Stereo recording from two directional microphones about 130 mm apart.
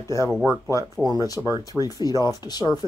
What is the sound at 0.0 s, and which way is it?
Speech, 20° left (ahead or behind).